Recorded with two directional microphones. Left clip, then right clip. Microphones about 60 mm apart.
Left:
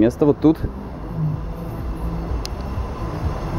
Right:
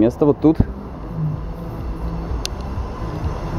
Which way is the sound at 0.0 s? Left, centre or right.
Centre.